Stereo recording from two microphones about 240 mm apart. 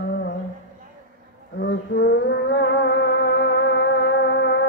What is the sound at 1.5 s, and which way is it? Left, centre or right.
Music, left.